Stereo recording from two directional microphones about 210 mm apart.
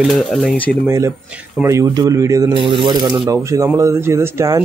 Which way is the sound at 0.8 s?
15° right (ahead or behind).